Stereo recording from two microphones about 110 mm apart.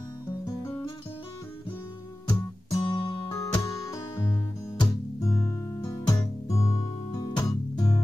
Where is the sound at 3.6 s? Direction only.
30° left (ahead or behind).